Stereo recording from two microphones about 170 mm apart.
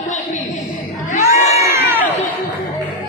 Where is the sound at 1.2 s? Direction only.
15° right (ahead or behind).